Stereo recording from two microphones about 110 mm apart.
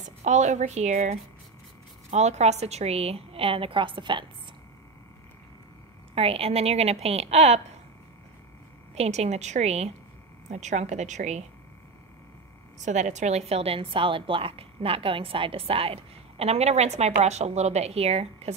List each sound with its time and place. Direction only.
0.2 s a woman's voice: 90° right; by 4.3 s 45° right (ahead or behind)
6.1 s a woman's voice: 65° right (ahead or behind)
8.9 s a woman's voice: 75° right (ahead or behind); by 11.4 s 90° right
12.7 s a woman's voice: 90° right; by 18.5 s 70° right (ahead or behind)